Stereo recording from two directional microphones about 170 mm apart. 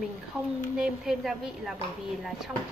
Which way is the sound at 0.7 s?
5° right (ahead or behind).